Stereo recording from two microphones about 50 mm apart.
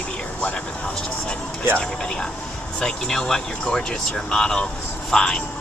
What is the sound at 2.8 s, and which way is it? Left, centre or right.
Speech, centre.